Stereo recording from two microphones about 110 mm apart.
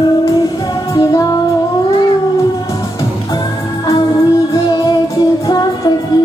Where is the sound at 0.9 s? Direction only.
35° left (ahead or behind).